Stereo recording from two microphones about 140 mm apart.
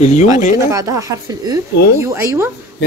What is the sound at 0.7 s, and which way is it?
Speech, 20° right (ahead or behind).